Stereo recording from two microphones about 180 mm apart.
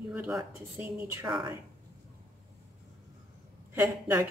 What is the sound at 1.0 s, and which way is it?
Speech, 15° right (ahead or behind).